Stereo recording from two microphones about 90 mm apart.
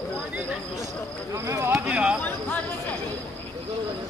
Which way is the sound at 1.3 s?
30° right (ahead or behind).